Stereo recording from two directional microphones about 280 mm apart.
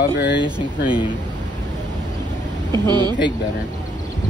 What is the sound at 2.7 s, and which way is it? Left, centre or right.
Speech, centre.